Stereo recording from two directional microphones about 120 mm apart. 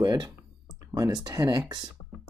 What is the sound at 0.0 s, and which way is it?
Speech, 35° right (ahead or behind).